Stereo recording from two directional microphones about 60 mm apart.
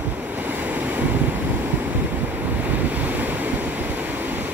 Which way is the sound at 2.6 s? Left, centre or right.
Right.